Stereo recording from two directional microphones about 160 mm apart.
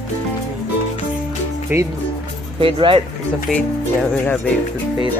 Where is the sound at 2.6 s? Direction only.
35° right (ahead or behind).